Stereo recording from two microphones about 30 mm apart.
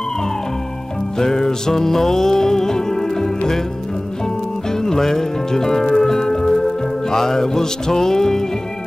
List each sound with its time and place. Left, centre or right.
1.1 s music: centre
4.8 s music: centre